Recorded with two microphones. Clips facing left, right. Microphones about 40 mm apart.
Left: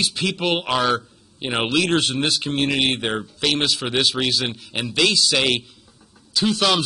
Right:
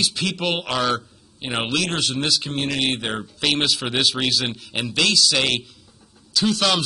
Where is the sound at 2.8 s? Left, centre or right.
Centre.